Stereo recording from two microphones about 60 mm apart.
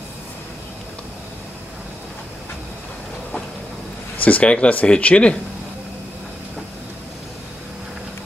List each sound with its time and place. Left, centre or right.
4.2 s speech: left